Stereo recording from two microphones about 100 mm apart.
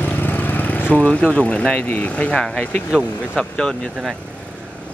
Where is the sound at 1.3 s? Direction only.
10° left (ahead or behind).